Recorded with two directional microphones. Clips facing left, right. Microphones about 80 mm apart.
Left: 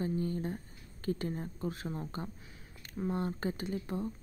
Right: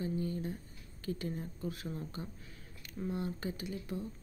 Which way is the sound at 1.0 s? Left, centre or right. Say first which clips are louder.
Left 3 dB; left.